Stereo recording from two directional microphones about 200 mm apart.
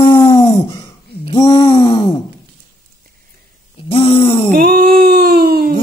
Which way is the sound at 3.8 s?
30° left (ahead or behind).